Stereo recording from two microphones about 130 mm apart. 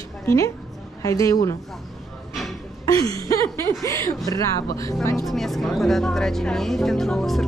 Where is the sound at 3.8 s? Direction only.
25° left (ahead or behind).